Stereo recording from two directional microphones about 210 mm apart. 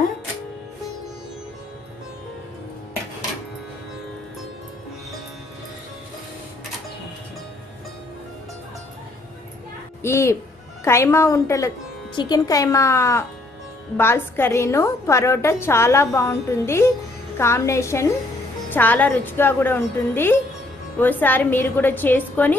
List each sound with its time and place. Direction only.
10.0 s a woman's voice: 10° left (ahead or behind)